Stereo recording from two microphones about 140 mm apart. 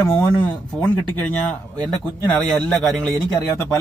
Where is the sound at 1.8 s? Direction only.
10° left (ahead or behind).